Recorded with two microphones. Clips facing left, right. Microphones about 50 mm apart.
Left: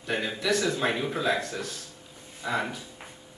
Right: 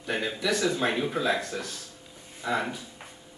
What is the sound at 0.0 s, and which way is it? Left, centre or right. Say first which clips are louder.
Speech: even; centre.